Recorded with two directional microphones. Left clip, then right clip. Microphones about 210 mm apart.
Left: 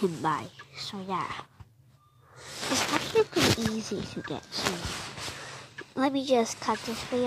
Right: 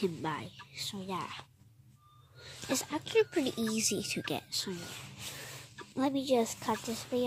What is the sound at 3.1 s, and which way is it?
Speech, 15° right (ahead or behind).